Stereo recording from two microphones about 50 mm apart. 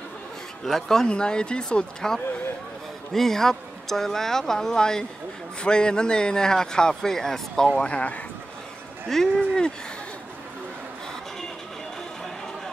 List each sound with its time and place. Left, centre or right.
0.7 s speech: centre
7.7 s speech: left
9.1 s speech: centre